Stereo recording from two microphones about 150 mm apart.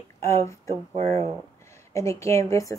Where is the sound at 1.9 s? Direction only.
20° left (ahead or behind).